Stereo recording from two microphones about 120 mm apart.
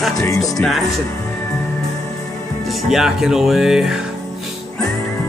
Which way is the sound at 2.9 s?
5° right (ahead or behind).